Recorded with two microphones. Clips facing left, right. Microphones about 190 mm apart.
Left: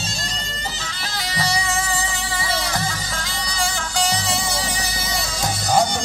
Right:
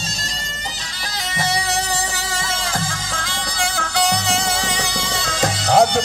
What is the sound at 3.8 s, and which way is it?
Music, 65° right (ahead or behind).